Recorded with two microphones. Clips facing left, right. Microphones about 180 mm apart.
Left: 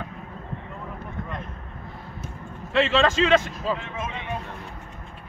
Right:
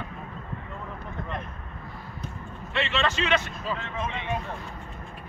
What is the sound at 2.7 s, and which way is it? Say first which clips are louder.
Speech: left 7 dB; 90° left.